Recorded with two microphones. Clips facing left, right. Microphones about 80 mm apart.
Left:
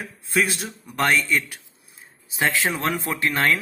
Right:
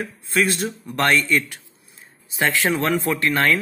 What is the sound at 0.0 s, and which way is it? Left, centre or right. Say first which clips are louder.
Speech: right 2 dB; centre.